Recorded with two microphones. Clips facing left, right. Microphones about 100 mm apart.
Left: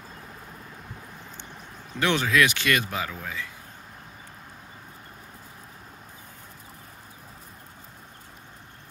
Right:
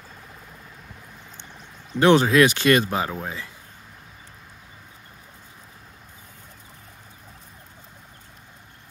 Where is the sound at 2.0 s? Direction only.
35° right (ahead or behind).